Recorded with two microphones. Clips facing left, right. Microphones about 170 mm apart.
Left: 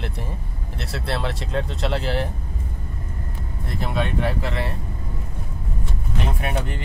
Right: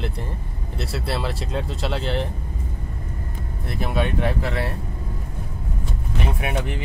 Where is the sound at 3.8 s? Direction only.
5° right (ahead or behind).